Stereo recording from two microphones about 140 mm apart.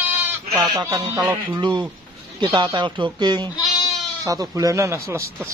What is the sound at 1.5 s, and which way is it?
Speech, 35° right (ahead or behind).